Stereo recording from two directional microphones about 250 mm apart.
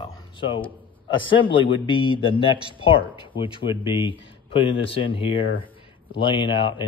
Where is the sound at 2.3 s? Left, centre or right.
Centre.